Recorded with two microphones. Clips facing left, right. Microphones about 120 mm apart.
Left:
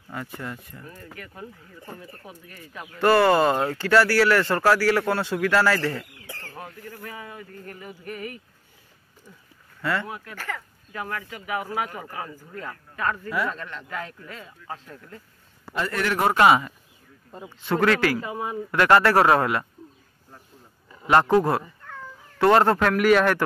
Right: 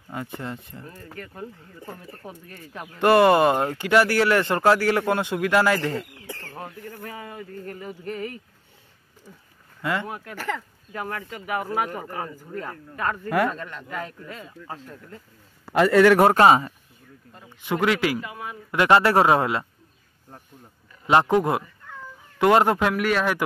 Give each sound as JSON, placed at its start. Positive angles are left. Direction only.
{"t": 0.1, "sound": "speech", "side_deg": -25}
{"t": 3.0, "sound": "speech", "side_deg": -20}
{"t": 9.8, "sound": "speech", "side_deg": -20}
{"t": 13.5, "sound": "speech", "side_deg": -10}
{"t": 15.7, "sound": "a man's voice", "side_deg": -90}
{"t": 16.3, "sound": "speech", "side_deg": -35}
{"t": 17.5, "sound": "speech", "side_deg": -15}
{"t": 18.3, "sound": "speech", "side_deg": 30}
{"t": 18.7, "sound": "speech", "side_deg": -20}
{"t": 21.1, "sound": "speech", "side_deg": -20}
{"t": 22.9, "sound": "speech", "side_deg": 0}